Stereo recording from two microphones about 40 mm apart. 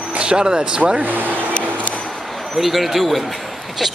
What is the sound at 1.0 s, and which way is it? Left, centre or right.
Speech, right.